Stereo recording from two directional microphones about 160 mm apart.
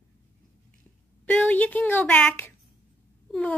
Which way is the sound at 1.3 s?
10° left (ahead or behind).